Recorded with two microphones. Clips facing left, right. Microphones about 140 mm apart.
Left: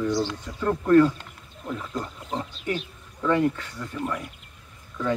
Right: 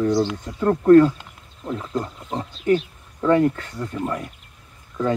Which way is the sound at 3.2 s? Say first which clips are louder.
Right 5 dB; 40° right (ahead or behind).